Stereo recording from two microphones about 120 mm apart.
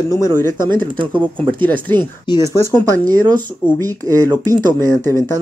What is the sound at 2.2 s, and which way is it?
Speech, 35° left (ahead or behind).